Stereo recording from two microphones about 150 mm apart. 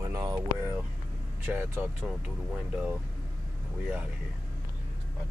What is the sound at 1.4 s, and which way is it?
Speech, 10° right (ahead or behind).